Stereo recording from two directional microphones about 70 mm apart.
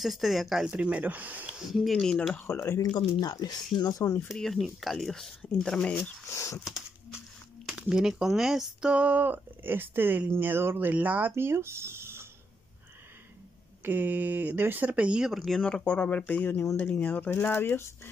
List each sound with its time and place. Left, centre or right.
0.0 s speech: centre
0.7 s speech: centre
1.5 s speech: centre
2.4 s speech: left
3.2 s speech: left
3.8 s speech: left
4.3 s speech: centre
6.3 s a sound: left
7.7 s speech: centre
8.9 s speech: right
13.8 s speech: right
15.3 s speech: centre
15.6 s speech: centre; by 18.1 s left